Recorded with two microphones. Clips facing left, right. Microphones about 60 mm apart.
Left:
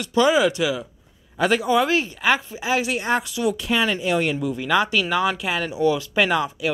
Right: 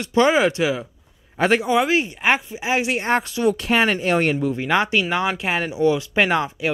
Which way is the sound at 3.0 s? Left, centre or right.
Right.